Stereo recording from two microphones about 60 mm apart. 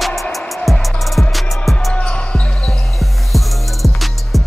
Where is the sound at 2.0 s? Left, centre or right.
Centre.